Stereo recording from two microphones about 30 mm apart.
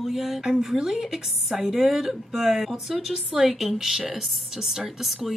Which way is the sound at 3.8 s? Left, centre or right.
Centre.